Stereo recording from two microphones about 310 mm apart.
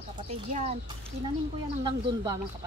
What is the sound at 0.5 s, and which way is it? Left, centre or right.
Speech, centre.